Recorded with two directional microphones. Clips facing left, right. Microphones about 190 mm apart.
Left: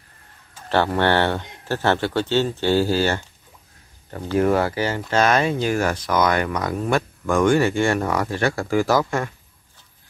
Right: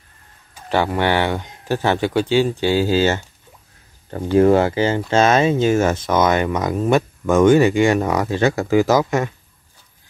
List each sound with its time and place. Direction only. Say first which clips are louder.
0.6 s speech: right 1 dB; 15° right (ahead or behind)